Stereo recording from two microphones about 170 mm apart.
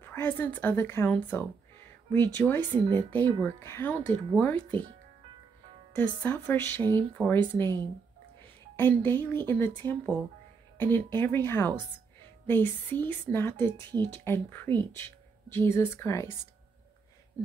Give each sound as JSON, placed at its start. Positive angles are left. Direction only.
{"t": 0.0, "sound": "speech", "side_deg": 10}
{"t": 5.9, "sound": "speech", "side_deg": 10}
{"t": 6.8, "sound": "speech", "side_deg": -25}
{"t": 7.2, "sound": "speech", "side_deg": 10}
{"t": 8.7, "sound": "speech", "side_deg": 10}